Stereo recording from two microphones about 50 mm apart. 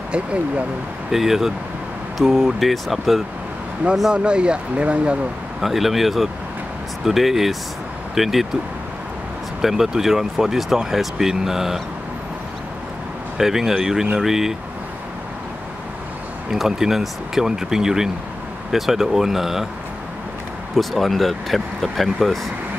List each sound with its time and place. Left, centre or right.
0.1 s speech: right
1.1 s speech: centre
4.1 s speech: centre
5.6 s speech: centre
9.6 s speech: centre
13.4 s speech: centre
16.4 s speech: centre
20.7 s speech: centre